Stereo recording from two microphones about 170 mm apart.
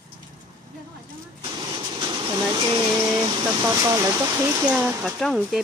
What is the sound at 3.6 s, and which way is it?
Speech, 15° right (ahead or behind).